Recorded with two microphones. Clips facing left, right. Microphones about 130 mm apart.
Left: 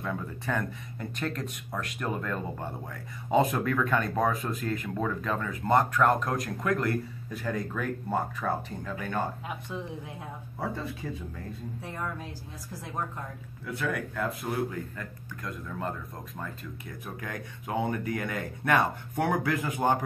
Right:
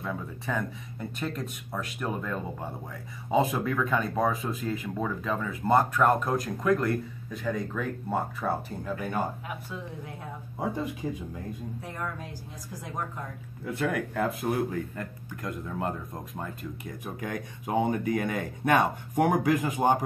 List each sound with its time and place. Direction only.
0.0 s speech: centre (ahead or behind)
10.6 s speech: 15° right (ahead or behind)
11.9 s speech: 5° left (ahead or behind)
14.2 s speech: 20° right (ahead or behind)
14.7 s speech: 40° right (ahead or behind); by 20.0 s 20° right (ahead or behind)